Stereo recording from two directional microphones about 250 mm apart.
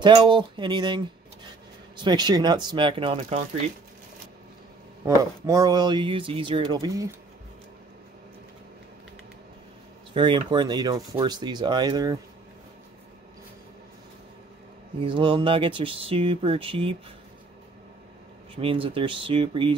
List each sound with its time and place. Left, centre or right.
0.0 s speech: centre
5.0 s speech: centre
10.1 s speech: centre
15.0 s speech: centre
18.5 s speech: right